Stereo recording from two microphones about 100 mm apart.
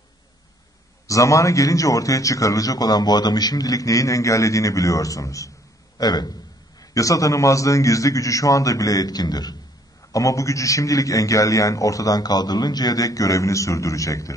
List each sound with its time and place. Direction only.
1.0 s a man's voice: 35° left (ahead or behind)